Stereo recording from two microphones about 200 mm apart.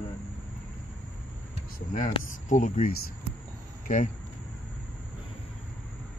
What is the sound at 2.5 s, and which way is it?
Speech, 40° left (ahead or behind).